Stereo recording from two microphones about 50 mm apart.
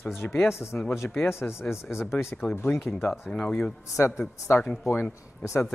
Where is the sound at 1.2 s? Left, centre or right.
Left.